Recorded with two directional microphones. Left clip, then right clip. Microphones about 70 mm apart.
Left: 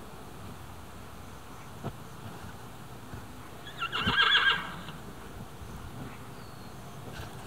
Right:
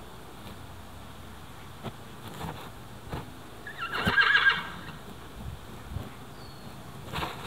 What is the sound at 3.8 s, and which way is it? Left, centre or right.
Neigh, left.